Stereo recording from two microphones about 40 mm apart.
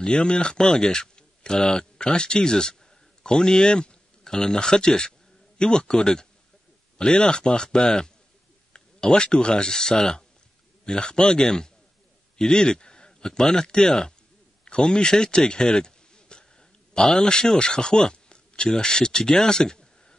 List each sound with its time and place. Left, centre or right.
0.0 s a man's voice: left